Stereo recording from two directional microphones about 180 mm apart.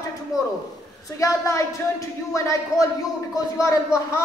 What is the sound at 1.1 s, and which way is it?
A woman's voice, 15° left (ahead or behind).